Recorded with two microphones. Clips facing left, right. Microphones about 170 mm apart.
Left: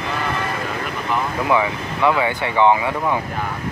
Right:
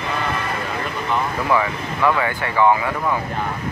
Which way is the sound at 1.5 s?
15° left (ahead or behind).